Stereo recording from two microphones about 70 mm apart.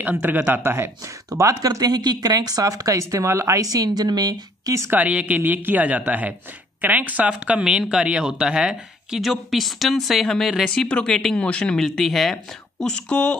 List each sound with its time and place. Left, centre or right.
0.0 s speech: right
0.7 s speech: right
4.9 s speech: centre
11.9 s speech: centre
12.8 s speech: centre